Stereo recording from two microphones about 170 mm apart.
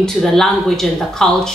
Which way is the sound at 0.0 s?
Centre (ahead or behind).